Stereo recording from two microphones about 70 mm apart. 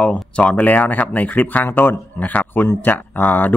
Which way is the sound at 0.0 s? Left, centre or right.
Centre.